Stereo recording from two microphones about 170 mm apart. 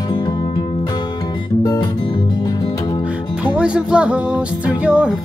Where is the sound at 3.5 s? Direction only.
5° right (ahead or behind).